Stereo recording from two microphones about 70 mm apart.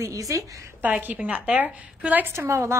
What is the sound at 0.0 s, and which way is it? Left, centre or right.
Speech, right.